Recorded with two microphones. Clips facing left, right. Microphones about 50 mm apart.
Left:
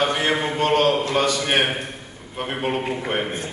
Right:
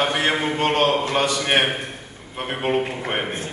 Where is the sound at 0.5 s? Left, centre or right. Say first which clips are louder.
Left 2 dB; right.